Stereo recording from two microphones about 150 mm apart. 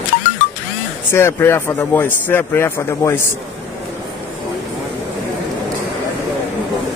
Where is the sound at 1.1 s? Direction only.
15° left (ahead or behind).